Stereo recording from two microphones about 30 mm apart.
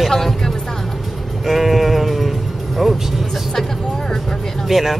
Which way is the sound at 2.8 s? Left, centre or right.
Centre.